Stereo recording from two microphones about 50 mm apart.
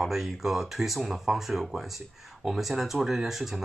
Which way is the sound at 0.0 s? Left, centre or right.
Centre.